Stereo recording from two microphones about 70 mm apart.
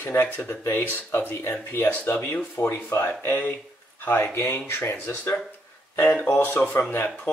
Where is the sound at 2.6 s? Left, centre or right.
Left.